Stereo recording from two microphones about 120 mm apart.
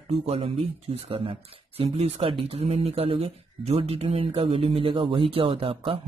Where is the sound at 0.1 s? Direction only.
60° right (ahead or behind).